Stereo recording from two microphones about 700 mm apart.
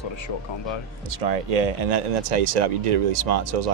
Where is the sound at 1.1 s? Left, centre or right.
Right.